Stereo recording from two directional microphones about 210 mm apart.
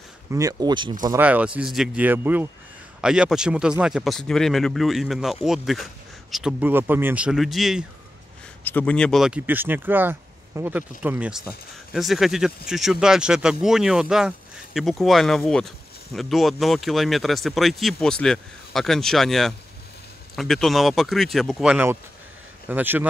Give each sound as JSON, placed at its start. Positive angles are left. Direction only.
{"t": 0.3, "sound": "speech", "side_deg": -15}
{"t": 1.0, "sound": "speech", "side_deg": -10}